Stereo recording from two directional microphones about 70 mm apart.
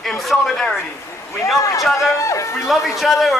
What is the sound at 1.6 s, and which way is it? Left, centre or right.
A man's voice, left.